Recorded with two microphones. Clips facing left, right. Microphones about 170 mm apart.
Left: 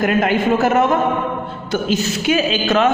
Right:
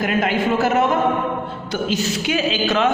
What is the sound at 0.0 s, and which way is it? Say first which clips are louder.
A woman's voice: left 3 dB; 50° left (ahead or behind).